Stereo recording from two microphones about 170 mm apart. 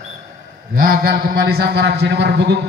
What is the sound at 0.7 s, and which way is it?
A man's voice, 60° right (ahead or behind).